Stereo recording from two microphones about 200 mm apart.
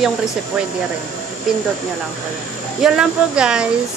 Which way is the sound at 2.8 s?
5° right (ahead or behind).